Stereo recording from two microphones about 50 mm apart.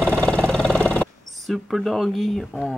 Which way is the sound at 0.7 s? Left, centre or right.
Left.